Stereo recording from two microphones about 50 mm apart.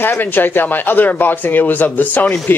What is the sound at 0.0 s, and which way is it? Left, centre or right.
Speech, left.